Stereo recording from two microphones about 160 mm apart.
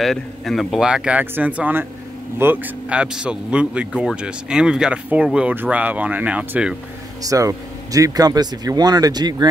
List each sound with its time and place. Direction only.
0.0 s a man's voice: centre (ahead or behind)
7.2 s speech: 20° right (ahead or behind)